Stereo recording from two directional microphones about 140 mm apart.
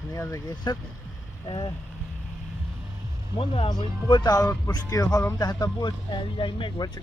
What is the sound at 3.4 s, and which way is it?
Speech, 35° left (ahead or behind).